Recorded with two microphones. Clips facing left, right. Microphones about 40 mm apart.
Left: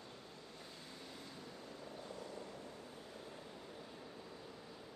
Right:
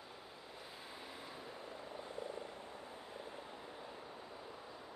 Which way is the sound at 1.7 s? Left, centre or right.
Right.